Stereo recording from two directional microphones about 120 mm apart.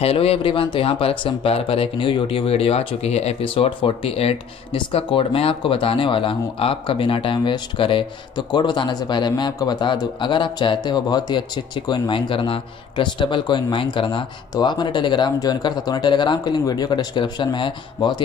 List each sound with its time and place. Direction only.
0.0 s speech: 55° left (ahead or behind)
3.5 s speech: 45° left (ahead or behind)